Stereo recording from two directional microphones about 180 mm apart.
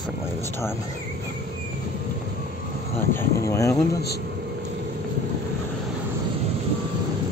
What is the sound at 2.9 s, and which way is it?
Speech, 15° left (ahead or behind).